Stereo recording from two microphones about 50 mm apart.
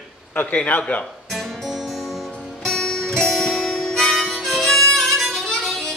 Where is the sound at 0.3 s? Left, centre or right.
Left.